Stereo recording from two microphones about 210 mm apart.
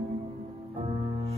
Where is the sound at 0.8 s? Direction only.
30° right (ahead or behind).